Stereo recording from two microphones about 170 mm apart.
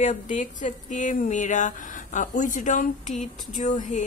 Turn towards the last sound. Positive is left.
turn(degrees=50)  # may be behind; listen again after turning